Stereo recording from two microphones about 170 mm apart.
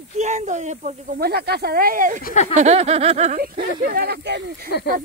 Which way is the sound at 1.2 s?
70° right (ahead or behind).